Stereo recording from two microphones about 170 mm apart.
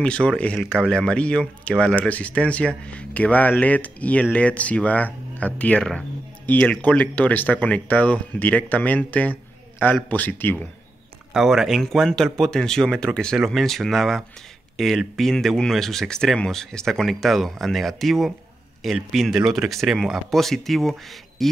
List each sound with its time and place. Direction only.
0.0 s speech: 5° left (ahead or behind)
11.3 s speech: 5° right (ahead or behind)